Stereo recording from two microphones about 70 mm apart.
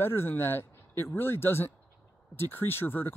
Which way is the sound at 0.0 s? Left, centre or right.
Left.